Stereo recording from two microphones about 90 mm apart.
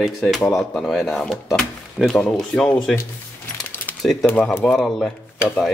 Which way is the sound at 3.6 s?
20° left (ahead or behind).